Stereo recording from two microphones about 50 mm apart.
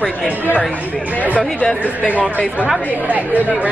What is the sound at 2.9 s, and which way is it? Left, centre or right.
Speech, right.